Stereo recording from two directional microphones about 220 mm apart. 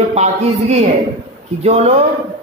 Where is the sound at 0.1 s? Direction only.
30° right (ahead or behind).